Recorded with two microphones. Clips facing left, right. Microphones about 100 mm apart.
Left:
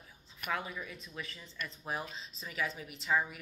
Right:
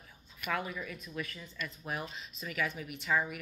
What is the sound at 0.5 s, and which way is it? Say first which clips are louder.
A woman's voice: right 2 dB; 20° left (ahead or behind).